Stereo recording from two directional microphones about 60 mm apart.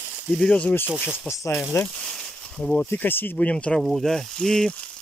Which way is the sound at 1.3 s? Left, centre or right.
Left.